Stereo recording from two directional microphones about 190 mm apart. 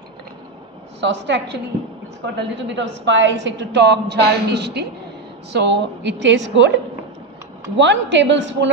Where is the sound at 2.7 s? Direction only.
70° right (ahead or behind).